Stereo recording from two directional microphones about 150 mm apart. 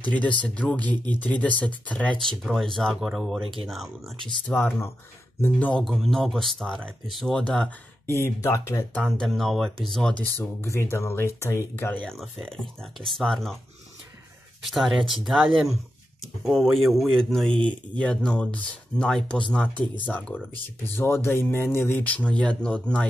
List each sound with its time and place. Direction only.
0.0 s speech: 10° left (ahead or behind)
4.5 s speech: 15° left (ahead or behind)
8.1 s speech: 20° left (ahead or behind)
9.2 s speech: centre (ahead or behind)
14.7 s speech: centre (ahead or behind)